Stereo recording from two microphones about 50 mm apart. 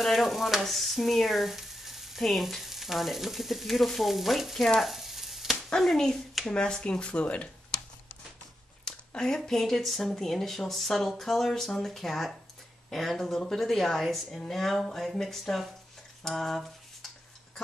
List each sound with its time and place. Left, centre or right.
0.0 s speech: centre
4.7 s sizzle: centre
5.8 s speech: centre
6.5 s speech: centre
8.8 s a sound: centre
9.4 s speech: centre